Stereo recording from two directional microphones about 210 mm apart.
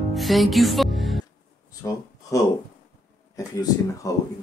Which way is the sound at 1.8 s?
15° left (ahead or behind).